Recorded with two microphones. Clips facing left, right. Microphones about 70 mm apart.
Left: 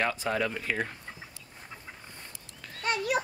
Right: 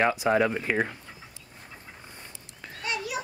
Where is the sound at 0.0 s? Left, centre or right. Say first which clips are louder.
Right 6 dB; centre.